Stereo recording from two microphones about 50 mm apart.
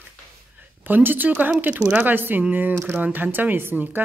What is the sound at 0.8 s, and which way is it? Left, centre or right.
A woman's voice, right.